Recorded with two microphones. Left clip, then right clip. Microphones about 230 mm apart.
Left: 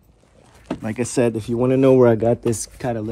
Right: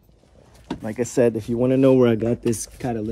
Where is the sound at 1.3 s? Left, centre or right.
Left.